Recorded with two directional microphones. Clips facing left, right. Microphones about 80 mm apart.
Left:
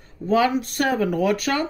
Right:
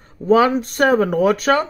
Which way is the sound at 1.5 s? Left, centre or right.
Right.